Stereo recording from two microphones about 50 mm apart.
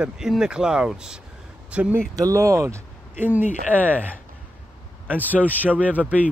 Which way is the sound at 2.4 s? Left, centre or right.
Right.